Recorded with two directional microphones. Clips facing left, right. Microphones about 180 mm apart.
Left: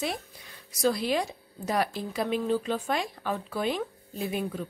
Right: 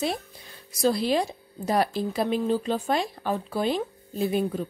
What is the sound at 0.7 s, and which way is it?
A woman's voice, 30° right (ahead or behind).